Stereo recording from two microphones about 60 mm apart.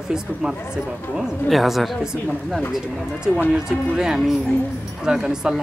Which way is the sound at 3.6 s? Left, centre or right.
Centre.